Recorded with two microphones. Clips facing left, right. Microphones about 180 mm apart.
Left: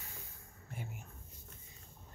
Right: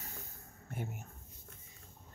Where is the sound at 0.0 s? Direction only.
45° right (ahead or behind).